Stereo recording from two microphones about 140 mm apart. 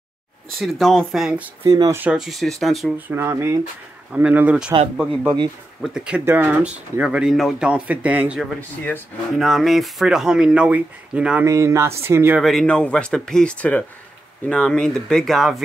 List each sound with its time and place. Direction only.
0.6 s speech: centre (ahead or behind)
1.6 s speech: 30° right (ahead or behind)
2.0 s speech: 5° right (ahead or behind)
3.1 s speech: 20° right (ahead or behind)
5.8 s speech: 5° right (ahead or behind)
8.5 s speech: 10° left (ahead or behind)
9.4 s speech: centre (ahead or behind)
11.4 s speech: 20° right (ahead or behind)
12.4 s speech: centre (ahead or behind)